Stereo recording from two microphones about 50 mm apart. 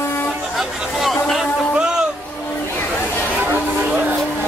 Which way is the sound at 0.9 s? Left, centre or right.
Centre.